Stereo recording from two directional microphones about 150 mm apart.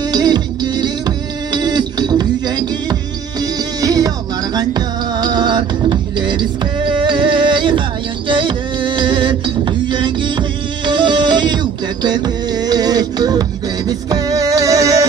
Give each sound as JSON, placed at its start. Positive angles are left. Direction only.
{"t": 0.1, "sound": "music", "side_deg": -25}